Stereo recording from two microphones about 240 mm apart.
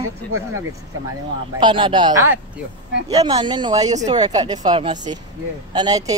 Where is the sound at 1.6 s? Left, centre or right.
Centre.